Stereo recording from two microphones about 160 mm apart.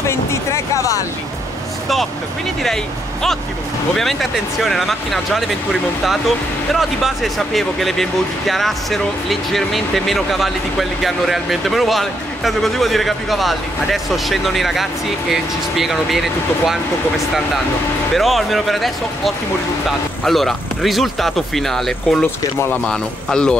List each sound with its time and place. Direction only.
0.0 s music: 15° left (ahead or behind)
2.6 s speech: centre (ahead or behind)
18.1 s speech: centre (ahead or behind)